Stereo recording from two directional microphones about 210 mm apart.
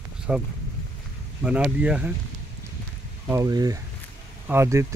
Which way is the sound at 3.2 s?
15° right (ahead or behind).